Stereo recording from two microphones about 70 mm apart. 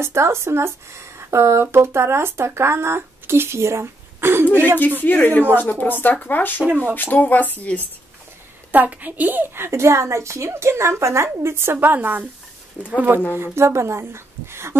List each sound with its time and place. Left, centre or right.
0.0 s speech: right
4.5 s speech: left
8.7 s speech: right
13.4 s speech: right